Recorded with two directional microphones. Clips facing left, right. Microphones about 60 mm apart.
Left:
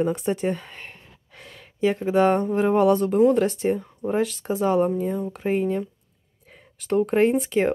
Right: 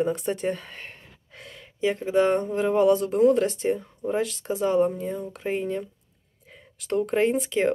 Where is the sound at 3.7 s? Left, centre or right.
Left.